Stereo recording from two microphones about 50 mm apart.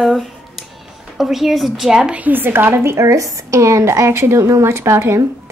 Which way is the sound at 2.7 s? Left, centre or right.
Right.